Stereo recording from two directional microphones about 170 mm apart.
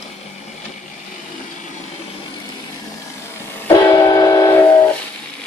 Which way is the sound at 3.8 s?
20° left (ahead or behind).